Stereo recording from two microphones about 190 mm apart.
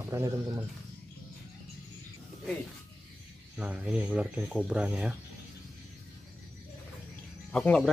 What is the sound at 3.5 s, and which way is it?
Speech, 5° right (ahead or behind).